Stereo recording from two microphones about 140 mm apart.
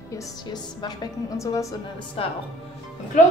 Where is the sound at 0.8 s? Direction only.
30° left (ahead or behind).